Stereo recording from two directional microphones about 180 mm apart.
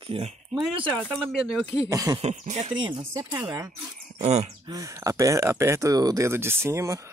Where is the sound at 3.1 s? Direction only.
20° right (ahead or behind).